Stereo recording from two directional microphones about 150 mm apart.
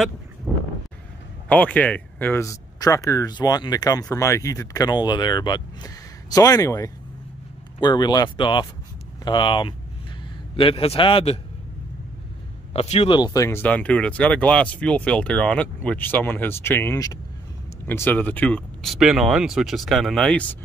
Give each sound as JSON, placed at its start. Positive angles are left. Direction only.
{"t": 0.5, "sound": "a sound", "side_deg": 0}
{"t": 1.5, "sound": "a man's voice", "side_deg": 10}
{"t": 12.7, "sound": "speech", "side_deg": 45}
{"t": 13.1, "sound": "speech", "side_deg": 25}